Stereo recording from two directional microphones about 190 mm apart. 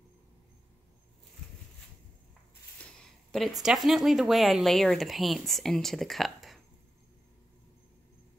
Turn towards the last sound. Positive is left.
turn(degrees=0)  # may be behind; listen again after turning